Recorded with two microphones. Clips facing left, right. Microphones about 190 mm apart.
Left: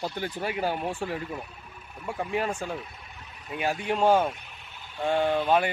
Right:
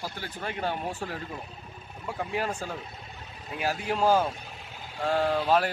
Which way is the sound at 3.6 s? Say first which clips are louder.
Left 2 dB; centre (ahead or behind).